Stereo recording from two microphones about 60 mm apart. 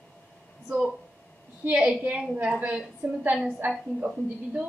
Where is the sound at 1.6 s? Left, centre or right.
Right.